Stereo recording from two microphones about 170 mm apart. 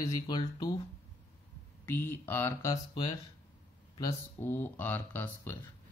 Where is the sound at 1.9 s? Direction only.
15° left (ahead or behind).